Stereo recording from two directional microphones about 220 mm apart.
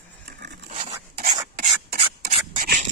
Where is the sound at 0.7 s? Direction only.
40° right (ahead or behind).